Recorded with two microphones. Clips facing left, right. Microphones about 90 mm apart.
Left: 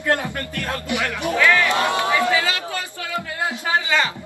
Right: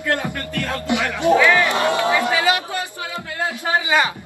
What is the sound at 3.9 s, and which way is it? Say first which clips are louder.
Speech: right 3 dB; 15° right (ahead or behind).